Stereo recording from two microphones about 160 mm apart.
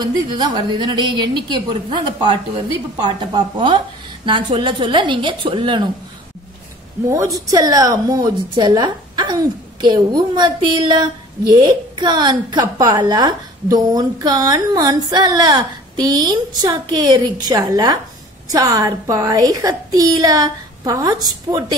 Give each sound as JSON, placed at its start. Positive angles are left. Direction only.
{"t": 0.0, "sound": "a woman's voice", "side_deg": -25}
{"t": 7.1, "sound": "a woman's voice", "side_deg": -20}